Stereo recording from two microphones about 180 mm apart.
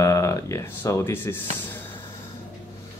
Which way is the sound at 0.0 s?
15° left (ahead or behind).